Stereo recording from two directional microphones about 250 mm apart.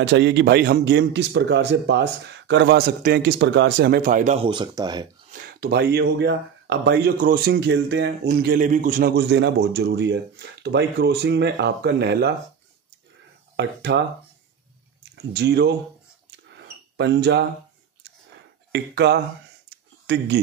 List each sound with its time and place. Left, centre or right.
0.0 s a man's voice: right; by 5.0 s centre
5.3 s speech: right
13.6 s a man's voice: right
15.1 s speech: right
16.3 s a sound: right
18.7 s speech: right
19.7 s a sound: right